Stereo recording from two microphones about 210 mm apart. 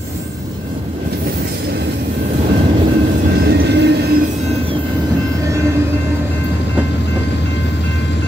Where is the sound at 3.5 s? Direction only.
55° right (ahead or behind).